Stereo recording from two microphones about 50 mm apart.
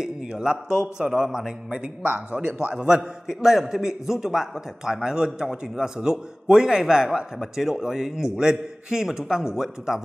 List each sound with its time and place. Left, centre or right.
0.0 s a man's voice: centre